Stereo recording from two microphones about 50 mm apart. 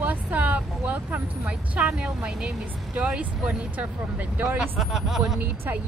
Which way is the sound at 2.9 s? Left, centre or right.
Right.